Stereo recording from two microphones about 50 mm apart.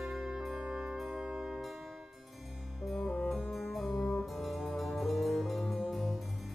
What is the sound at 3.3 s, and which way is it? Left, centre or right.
Music, centre.